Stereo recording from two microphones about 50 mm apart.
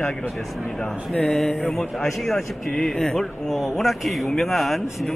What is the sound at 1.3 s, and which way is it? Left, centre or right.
A man's voice, centre.